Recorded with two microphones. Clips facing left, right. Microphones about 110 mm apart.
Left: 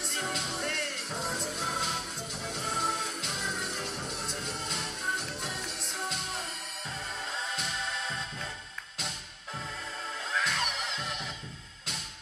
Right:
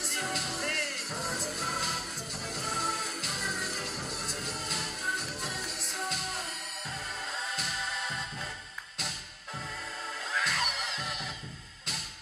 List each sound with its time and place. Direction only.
0.0 s music: centre (ahead or behind)
10.3 s music: centre (ahead or behind)